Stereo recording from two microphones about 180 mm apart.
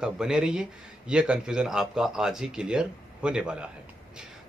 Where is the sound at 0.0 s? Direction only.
5° right (ahead or behind).